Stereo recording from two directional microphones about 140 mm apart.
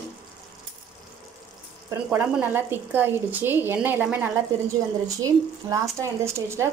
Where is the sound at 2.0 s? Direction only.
10° right (ahead or behind).